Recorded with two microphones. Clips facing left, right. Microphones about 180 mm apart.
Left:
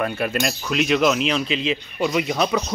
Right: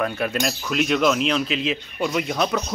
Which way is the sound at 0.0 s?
Centre (ahead or behind).